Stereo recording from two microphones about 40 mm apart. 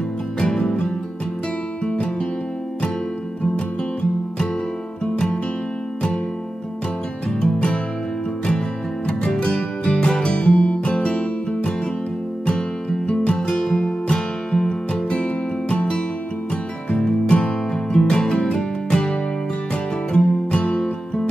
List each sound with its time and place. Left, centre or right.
0.4 s music: centre
5.0 s music: left
7.4 s music: left
9.0 s music: centre
13.4 s music: centre